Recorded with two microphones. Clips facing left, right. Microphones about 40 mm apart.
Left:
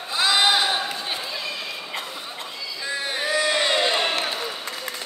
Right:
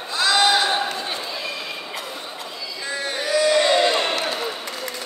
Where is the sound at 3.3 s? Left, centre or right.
Left.